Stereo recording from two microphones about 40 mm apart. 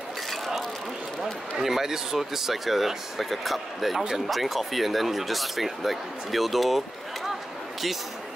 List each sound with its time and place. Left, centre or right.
1.6 s speech: centre